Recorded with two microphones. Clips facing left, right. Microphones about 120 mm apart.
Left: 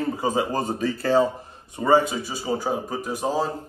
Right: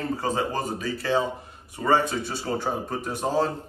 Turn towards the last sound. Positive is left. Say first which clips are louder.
# even
turn(degrees=0)  # may be behind; listen again after turning